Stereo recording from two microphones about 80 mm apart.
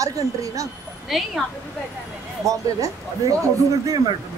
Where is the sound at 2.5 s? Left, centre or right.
Right.